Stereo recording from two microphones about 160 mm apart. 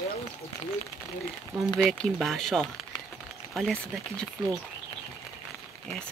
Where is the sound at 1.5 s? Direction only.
5° left (ahead or behind).